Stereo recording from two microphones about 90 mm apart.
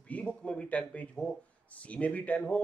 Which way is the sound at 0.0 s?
15° left (ahead or behind).